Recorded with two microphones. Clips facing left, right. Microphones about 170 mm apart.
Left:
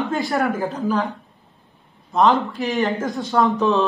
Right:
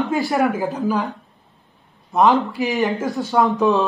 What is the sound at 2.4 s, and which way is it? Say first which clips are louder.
A man's voice: right 1 dB; centre (ahead or behind).